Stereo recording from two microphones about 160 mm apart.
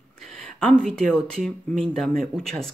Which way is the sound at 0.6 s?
5° left (ahead or behind).